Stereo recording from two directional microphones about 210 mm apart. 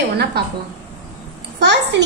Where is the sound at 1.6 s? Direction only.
55° right (ahead or behind).